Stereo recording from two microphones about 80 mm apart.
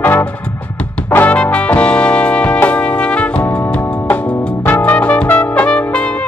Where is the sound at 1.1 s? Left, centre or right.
Left.